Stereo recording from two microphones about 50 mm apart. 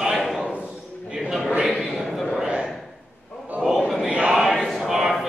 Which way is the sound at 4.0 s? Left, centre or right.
Right.